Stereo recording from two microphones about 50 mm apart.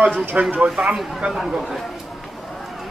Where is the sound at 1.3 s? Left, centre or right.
Centre.